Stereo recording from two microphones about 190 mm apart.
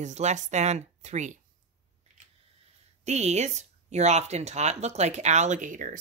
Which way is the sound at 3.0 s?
35° right (ahead or behind).